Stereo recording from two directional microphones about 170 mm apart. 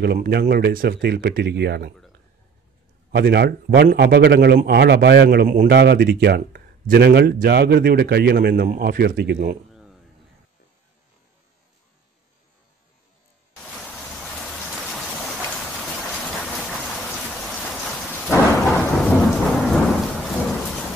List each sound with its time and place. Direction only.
0.0 s speech: 70° right (ahead or behind)
3.1 s speech: 80° right; by 5.8 s 60° right (ahead or behind)
5.8 s speech: 80° right
9.7 s a sound: centre (ahead or behind)
18.2 s thunder: centre (ahead or behind)